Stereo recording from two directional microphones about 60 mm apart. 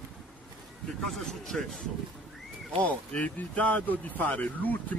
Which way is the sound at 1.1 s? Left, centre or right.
Centre.